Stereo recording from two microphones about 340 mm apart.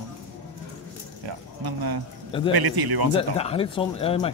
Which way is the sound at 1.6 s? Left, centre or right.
Right.